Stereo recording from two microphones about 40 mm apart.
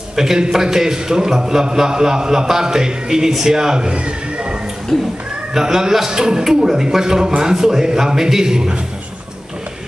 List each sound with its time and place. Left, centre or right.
0.1 s a man's voice: centre
4.9 s speech: centre
5.5 s a man's voice: centre